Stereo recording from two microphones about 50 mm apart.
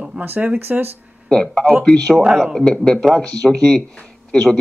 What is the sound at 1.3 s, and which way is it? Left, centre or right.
Speech, centre.